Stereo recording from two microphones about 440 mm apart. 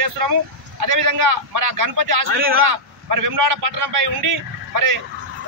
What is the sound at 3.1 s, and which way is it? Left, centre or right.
A man's voice, right.